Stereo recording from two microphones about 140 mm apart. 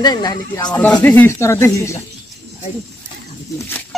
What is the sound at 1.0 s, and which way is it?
Speech, 15° left (ahead or behind).